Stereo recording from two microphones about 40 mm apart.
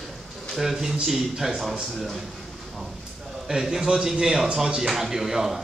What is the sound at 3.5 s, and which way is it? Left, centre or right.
Speech, centre.